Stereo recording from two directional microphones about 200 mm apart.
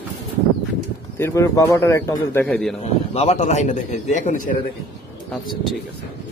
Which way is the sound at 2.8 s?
30° left (ahead or behind).